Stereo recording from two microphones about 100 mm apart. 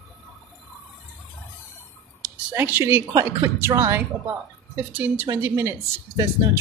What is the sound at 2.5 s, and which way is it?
A woman's voice, 20° right (ahead or behind).